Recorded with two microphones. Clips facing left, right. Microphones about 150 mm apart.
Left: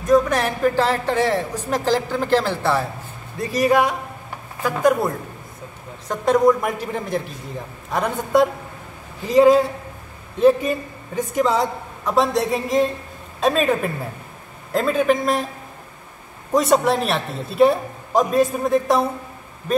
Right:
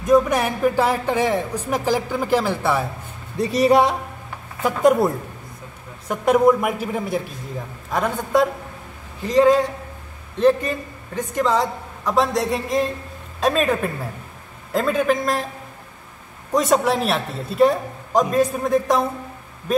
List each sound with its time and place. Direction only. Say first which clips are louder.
0.1 s speech: even; 10° right (ahead or behind)
3.3 s speech: right 2 dB; 25° right (ahead or behind)
6.0 s a man's voice: even; 10° right (ahead or behind)
16.5 s a man's voice: left 1 dB; centre (ahead or behind)